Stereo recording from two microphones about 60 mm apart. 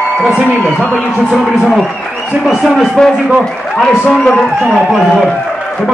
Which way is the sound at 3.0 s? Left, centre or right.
Centre.